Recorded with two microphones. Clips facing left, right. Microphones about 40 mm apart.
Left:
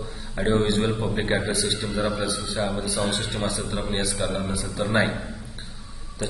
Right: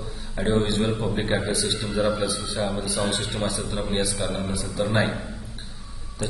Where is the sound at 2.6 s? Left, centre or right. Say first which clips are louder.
Right 1 dB; centre.